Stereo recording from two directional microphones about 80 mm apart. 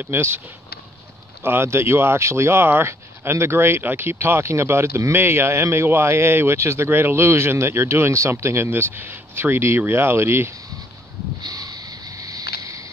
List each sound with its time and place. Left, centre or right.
0.0 s speech: right
1.4 s speech: right
11.4 s vehicle: right